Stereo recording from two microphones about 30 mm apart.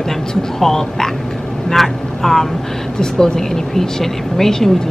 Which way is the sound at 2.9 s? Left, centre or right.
Left.